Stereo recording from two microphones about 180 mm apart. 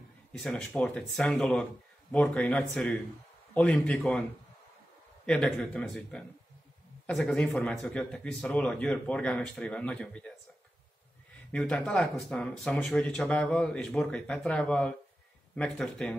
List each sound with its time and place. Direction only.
0.3 s a man's voice: 5° left (ahead or behind)
5.2 s speech: 5° left (ahead or behind)
11.5 s speech: 5° left (ahead or behind)